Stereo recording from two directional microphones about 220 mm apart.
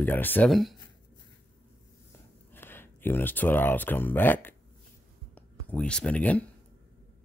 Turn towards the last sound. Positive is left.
turn(degrees=5)  # may be behind; listen again after turning